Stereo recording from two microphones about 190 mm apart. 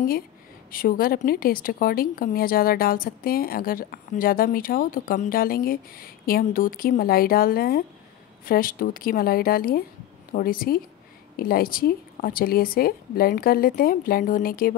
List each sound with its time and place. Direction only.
0.7 s a woman's voice: 50° left (ahead or behind)